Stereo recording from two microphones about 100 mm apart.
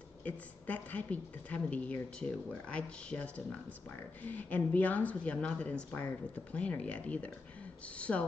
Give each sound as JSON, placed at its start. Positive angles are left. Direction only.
{"t": 0.2, "sound": "a woman's voice", "side_deg": 15}